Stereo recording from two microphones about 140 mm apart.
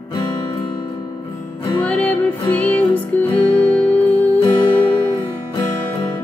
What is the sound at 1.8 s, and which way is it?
Music, 10° left (ahead or behind).